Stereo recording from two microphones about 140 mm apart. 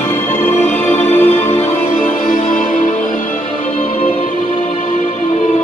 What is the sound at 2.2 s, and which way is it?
Music, 65° left (ahead or behind).